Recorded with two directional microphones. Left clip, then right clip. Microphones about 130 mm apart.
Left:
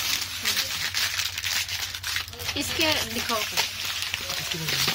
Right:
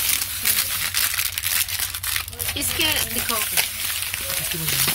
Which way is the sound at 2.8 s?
30° left (ahead or behind).